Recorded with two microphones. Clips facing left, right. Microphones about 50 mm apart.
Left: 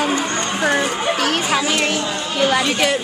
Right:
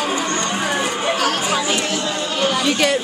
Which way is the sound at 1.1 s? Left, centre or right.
Left.